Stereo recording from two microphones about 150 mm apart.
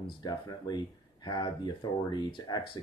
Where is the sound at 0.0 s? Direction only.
25° left (ahead or behind).